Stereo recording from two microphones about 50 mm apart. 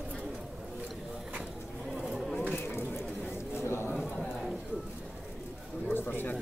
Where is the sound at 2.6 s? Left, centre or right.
Left.